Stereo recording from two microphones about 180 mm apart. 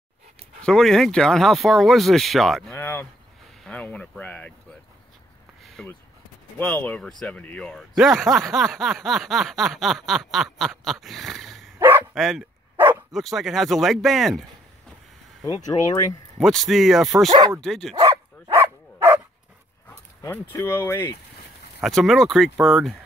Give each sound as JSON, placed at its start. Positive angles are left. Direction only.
{"t": 0.6, "sound": "speech", "side_deg": 5}
{"t": 3.6, "sound": "a sound", "side_deg": 5}
{"t": 5.6, "sound": "a sound", "side_deg": 0}
{"t": 6.6, "sound": "speech", "side_deg": 10}
{"t": 11.8, "sound": "bow-wow", "side_deg": -10}
{"t": 12.2, "sound": "speech", "side_deg": 0}
{"t": 12.7, "sound": "bow-wow", "side_deg": -10}
{"t": 13.1, "sound": "speech", "side_deg": 0}
{"t": 15.6, "sound": "speech", "side_deg": 20}
{"t": 16.3, "sound": "speech", "side_deg": 0}
{"t": 17.9, "sound": "dog", "side_deg": -20}
{"t": 19.9, "sound": "speech", "side_deg": 15}
{"t": 21.8, "sound": "speech", "side_deg": 0}